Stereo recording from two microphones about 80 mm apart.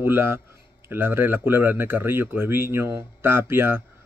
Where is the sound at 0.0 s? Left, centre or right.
Right.